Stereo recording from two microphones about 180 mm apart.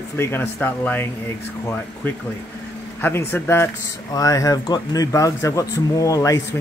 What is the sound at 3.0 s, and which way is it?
Speech, 10° left (ahead or behind).